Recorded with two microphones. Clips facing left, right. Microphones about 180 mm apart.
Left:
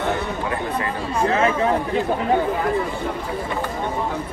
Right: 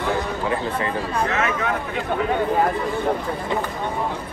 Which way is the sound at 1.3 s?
30° left (ahead or behind).